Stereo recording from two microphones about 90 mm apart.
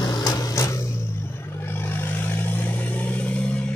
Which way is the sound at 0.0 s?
45° left (ahead or behind).